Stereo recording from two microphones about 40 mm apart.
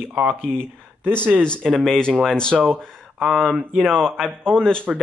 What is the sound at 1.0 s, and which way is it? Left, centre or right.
Speech, right.